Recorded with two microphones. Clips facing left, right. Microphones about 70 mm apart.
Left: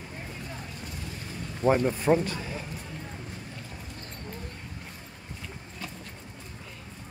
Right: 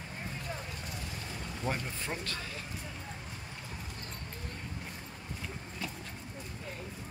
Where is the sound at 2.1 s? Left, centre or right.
Left.